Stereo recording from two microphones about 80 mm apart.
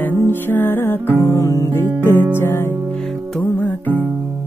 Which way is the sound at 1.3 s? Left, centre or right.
Left.